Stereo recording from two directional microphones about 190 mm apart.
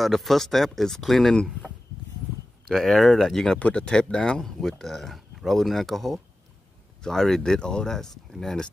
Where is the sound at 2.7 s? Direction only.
Centre (ahead or behind).